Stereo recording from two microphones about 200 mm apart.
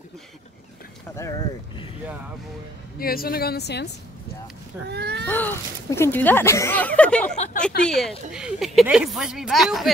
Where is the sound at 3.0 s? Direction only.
50° left (ahead or behind).